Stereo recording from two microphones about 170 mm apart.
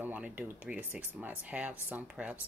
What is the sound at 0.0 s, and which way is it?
Speech, 10° right (ahead or behind).